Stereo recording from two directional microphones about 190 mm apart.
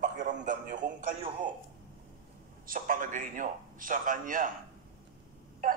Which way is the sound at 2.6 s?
45° right (ahead or behind).